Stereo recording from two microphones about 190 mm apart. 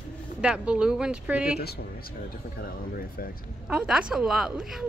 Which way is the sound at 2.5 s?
50° left (ahead or behind).